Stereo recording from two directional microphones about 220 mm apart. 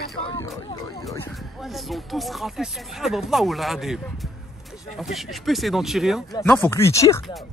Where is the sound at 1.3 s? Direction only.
Centre (ahead or behind).